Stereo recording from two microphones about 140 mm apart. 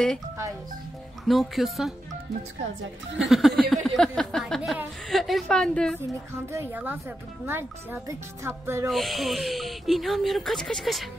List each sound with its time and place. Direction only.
1.2 s speech: centre (ahead or behind)
3.3 s speech: centre (ahead or behind)
3.7 s a sound: centre (ahead or behind)
4.6 s speech: 5° right (ahead or behind)
6.5 s a woman's voice: 15° right (ahead or behind)
8.8 s speech: centre (ahead or behind)